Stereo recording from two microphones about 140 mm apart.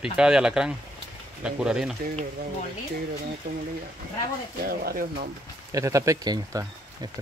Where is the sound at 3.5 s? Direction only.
90° right.